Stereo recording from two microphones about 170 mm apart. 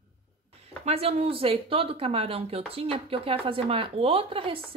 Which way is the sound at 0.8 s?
35° right (ahead or behind).